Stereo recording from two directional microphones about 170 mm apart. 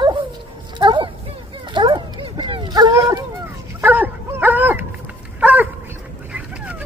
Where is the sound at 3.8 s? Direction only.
10° right (ahead or behind).